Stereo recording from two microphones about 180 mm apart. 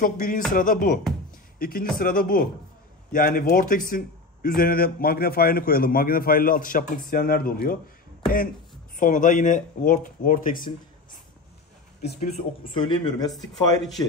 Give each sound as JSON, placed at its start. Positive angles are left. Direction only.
{"t": 0.0, "sound": "a man's voice", "side_deg": 50}
{"t": 8.9, "sound": "speech", "side_deg": 45}
{"t": 12.2, "sound": "speech", "side_deg": 30}
{"t": 13.3, "sound": "speech", "side_deg": 0}